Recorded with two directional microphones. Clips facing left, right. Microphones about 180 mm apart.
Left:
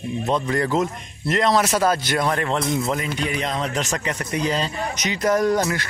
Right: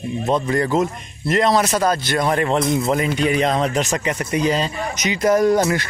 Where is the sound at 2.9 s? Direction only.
75° right (ahead or behind).